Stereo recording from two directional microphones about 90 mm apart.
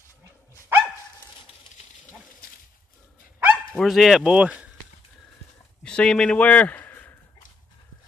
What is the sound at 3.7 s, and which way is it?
Speech, 5° right (ahead or behind).